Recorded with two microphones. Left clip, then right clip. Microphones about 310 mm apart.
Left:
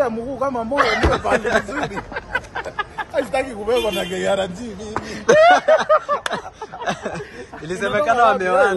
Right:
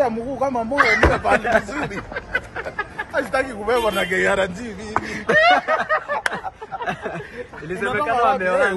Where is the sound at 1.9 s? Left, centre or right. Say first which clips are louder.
Left 1 dB; left.